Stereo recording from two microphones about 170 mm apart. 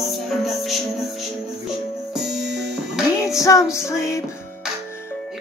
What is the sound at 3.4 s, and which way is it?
Female singing, 20° left (ahead or behind).